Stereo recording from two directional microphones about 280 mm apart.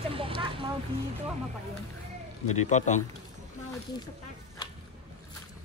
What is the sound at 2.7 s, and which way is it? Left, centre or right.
Speech, left.